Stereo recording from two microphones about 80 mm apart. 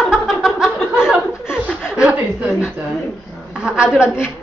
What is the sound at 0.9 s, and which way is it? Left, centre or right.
Chuckle, centre.